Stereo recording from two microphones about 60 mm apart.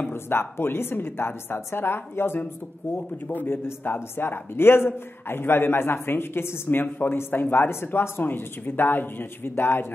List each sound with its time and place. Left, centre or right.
0.0 s speech: left